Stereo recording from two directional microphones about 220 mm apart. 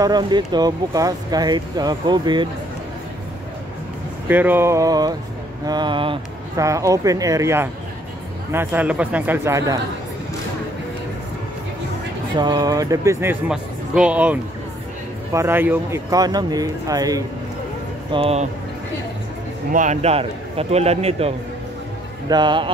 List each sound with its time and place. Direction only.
0.0 s speech: 20° right (ahead or behind)
4.3 s speech: 10° right (ahead or behind)
12.4 s speech: 20° right (ahead or behind)
18.1 s speech: 25° right (ahead or behind)
19.7 s speech: 35° right (ahead or behind)
22.3 s speech: 20° right (ahead or behind)